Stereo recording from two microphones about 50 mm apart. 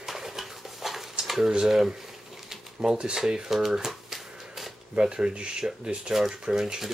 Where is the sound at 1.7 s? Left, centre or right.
Centre.